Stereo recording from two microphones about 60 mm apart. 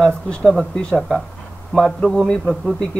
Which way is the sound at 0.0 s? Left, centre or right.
Centre.